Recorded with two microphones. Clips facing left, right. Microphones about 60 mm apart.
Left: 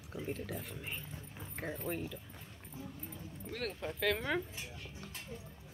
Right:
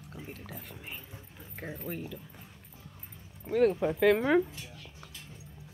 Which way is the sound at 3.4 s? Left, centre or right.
Centre.